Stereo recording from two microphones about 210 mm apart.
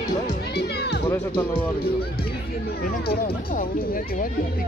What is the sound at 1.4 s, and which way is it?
Speech, 5° left (ahead or behind).